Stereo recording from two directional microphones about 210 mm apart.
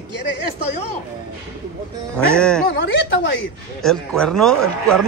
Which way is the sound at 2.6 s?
60° left (ahead or behind).